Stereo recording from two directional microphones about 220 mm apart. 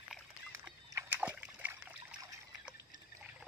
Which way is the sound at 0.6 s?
15° right (ahead or behind).